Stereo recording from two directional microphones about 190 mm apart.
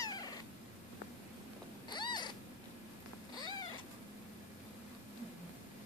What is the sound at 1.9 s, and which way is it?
Cat, 25° left (ahead or behind).